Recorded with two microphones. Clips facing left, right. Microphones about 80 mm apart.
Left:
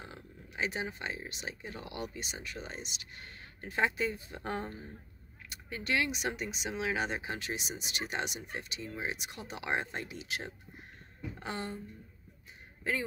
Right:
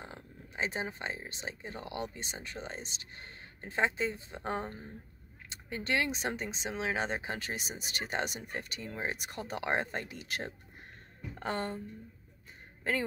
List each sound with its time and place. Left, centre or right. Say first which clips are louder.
0.0 s speech: right 1 dB; right
12.9 s a man's voice: right 2 dB; right